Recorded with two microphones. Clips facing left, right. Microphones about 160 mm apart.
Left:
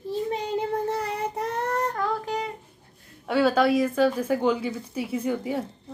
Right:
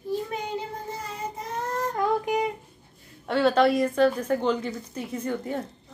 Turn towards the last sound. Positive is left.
turn(degrees=5)  # may be behind; listen again after turning